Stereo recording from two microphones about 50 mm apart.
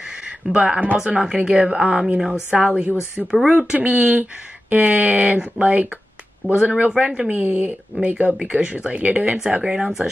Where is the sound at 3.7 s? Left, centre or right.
Right.